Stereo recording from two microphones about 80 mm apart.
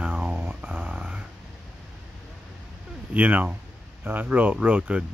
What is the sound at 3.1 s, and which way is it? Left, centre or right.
Speech, right.